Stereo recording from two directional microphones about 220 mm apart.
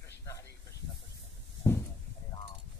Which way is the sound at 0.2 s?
15° left (ahead or behind).